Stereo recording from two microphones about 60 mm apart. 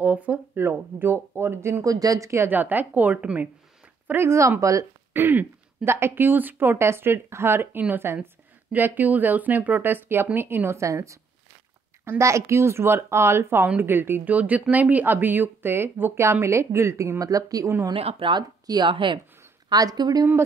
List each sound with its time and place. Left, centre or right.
0.0 s speech: right
0.6 s speech: right
1.9 s a woman's voice: right
2.4 s a woman's voice: right
4.3 s speech: right
5.1 s speech: right
10.8 s speech: right
14.2 s speech: right
17.2 s speech: right
18.7 s speech: right